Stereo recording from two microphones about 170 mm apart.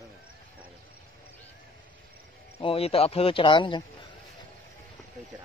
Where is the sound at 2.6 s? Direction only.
35° left (ahead or behind).